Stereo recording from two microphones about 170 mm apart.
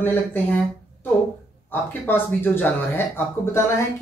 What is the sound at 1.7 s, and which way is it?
Speech, 10° left (ahead or behind).